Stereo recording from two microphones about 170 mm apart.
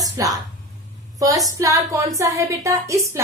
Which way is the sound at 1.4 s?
20° right (ahead or behind).